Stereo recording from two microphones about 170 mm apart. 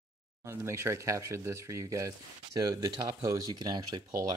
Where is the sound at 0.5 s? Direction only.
15° right (ahead or behind).